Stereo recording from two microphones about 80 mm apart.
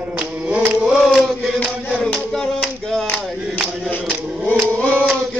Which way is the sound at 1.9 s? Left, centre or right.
Centre.